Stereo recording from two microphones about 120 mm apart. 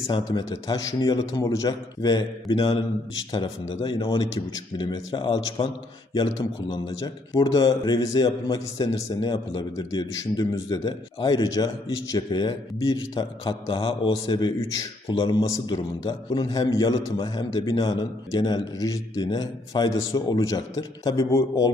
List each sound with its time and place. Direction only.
0.1 s a man's voice: 40° left (ahead or behind)
1.4 s a man's voice: 25° left (ahead or behind)
1.7 s a man's voice: 35° left (ahead or behind)
7.3 s a man's voice: 30° left (ahead or behind)